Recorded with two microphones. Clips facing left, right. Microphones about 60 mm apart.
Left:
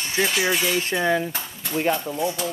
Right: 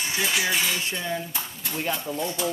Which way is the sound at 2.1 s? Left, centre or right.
Centre.